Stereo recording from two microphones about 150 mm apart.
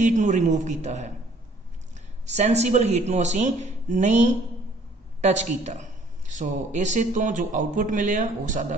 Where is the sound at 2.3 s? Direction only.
50° right (ahead or behind).